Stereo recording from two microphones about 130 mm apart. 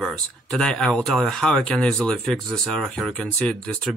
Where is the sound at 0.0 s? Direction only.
5° left (ahead or behind).